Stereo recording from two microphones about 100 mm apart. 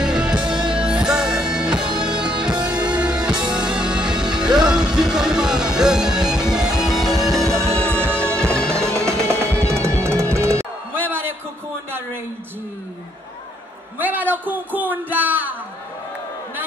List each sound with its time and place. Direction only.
0.0 s music: 10° right (ahead or behind); by 8.9 s 10° left (ahead or behind)
9.2 s music: 30° right (ahead or behind)
11.1 s a sound: 20° right (ahead or behind)
13.9 s a man's voice: 20° right (ahead or behind)